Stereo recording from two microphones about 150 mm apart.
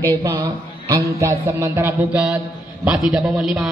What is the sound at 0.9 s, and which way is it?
Mantra, 20° right (ahead or behind).